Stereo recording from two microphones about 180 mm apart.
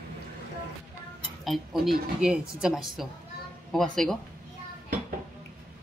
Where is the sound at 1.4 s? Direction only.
Centre (ahead or behind).